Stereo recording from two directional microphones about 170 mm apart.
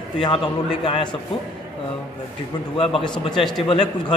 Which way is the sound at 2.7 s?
30° left (ahead or behind).